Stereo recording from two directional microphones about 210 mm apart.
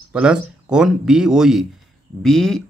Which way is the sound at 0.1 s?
5° right (ahead or behind).